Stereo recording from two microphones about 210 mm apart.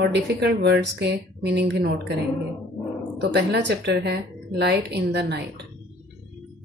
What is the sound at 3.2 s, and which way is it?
A woman's voice, 55° right (ahead or behind).